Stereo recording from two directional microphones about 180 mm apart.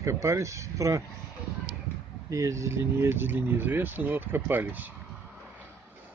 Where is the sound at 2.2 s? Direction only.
20° right (ahead or behind).